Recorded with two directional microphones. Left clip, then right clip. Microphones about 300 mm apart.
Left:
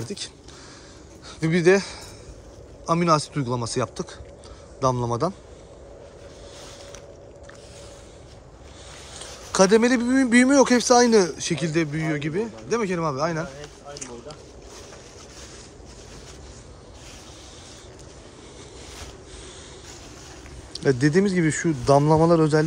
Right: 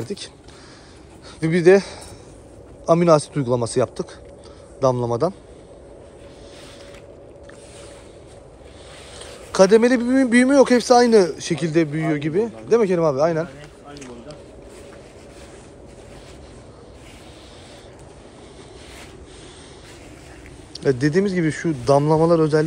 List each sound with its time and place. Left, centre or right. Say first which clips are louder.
0.0 s speech: right 3 dB; centre
1.4 s speech: right 5 dB; centre
9.5 s speech: right 4 dB; centre
13.9 s a sound: right 1 dB; centre
20.7 s speech: right 1 dB; centre